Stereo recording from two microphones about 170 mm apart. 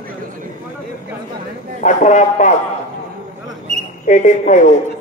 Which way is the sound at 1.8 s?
45° left (ahead or behind).